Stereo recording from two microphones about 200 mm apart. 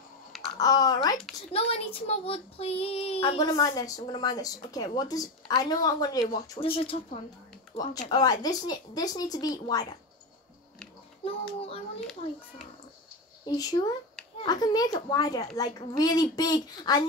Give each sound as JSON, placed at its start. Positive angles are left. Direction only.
{"t": 0.6, "sound": "child singing", "side_deg": 20}
{"t": 1.5, "sound": "child singing", "side_deg": 30}
{"t": 11.2, "sound": "child singing", "side_deg": 30}
{"t": 13.5, "sound": "child singing", "side_deg": 20}